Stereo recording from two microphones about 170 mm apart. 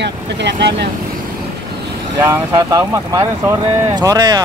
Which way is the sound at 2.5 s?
20° right (ahead or behind).